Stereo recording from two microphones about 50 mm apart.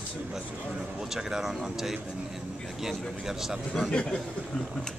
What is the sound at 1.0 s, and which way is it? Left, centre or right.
Speech, centre.